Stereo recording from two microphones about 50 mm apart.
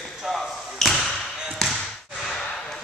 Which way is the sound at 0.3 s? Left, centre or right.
Centre.